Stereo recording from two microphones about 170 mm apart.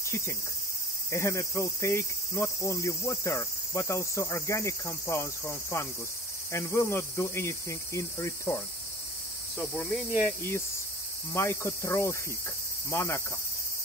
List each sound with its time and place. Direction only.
1.1 s cricket: 15° left (ahead or behind)